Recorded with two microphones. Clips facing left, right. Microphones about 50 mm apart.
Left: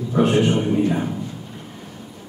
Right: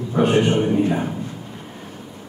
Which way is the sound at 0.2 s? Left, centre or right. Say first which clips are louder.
Right 1 dB; right.